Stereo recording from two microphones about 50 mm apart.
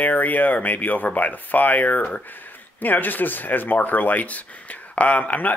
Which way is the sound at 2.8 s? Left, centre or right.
Left.